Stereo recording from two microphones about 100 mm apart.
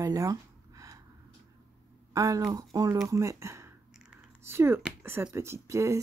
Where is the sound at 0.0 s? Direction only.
35° right (ahead or behind).